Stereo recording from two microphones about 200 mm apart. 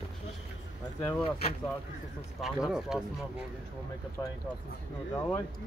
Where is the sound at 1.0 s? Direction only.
30° left (ahead or behind).